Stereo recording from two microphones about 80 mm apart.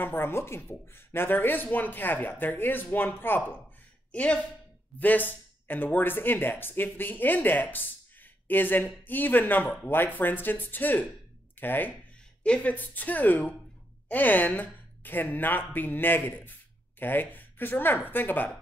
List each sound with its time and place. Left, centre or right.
0.0 s speech: left
4.1 s speech: centre